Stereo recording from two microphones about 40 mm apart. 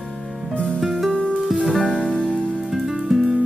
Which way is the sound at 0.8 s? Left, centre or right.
Centre.